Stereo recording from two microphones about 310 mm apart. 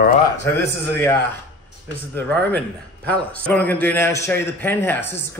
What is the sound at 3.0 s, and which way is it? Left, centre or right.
A man's voice, centre.